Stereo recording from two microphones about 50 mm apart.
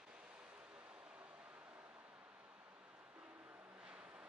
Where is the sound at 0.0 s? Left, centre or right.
Centre.